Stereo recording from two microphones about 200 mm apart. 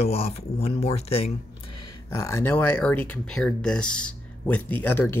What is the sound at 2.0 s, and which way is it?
Speech, 15° left (ahead or behind).